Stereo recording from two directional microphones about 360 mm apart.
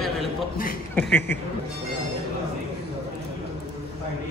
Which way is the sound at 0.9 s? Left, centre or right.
Centre.